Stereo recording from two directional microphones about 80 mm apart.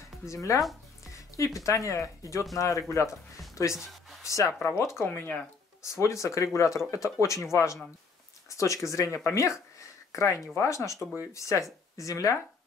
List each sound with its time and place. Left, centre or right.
0.3 s speech: left
1.0 s music: left
1.6 s speech: left
3.7 s a sound: centre
4.2 s a sound: left
4.6 s speech: left